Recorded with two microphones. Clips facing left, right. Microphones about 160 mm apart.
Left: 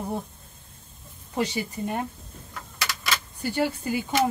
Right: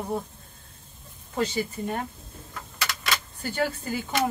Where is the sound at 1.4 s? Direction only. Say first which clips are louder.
Even; 15° left (ahead or behind).